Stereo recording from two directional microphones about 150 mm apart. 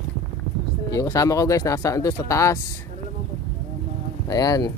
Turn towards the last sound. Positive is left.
turn(degrees=25)  # may be behind; listen again after turning